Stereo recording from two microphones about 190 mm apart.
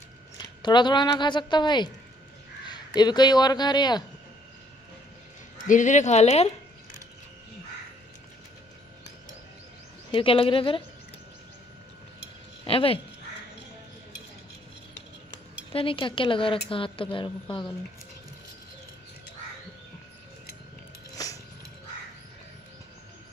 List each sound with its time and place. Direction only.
0.6 s a woman's voice: 25° left (ahead or behind)
5.7 s speech: 40° left (ahead or behind)
10.1 s a woman's voice: 30° left (ahead or behind)
12.6 s a woman's voice: 30° left (ahead or behind)
15.7 s a woman's voice: 30° left (ahead or behind)
21.2 s dog: 20° left (ahead or behind)